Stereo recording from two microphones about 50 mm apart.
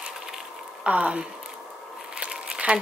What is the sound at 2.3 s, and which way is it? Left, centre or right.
Crumpling, centre.